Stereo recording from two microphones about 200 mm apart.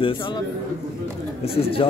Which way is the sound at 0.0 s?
25° left (ahead or behind).